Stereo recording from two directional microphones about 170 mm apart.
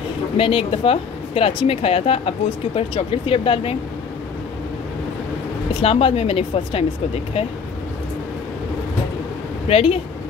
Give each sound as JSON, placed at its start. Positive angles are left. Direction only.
{"t": 0.4, "sound": "speech", "side_deg": 30}
{"t": 5.8, "sound": "speech", "side_deg": 35}
{"t": 9.7, "sound": "speech", "side_deg": 35}